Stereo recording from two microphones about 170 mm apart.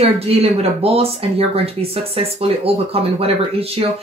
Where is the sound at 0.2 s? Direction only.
35° right (ahead or behind).